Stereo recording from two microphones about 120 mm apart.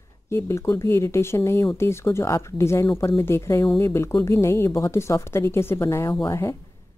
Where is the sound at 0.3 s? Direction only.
25° left (ahead or behind).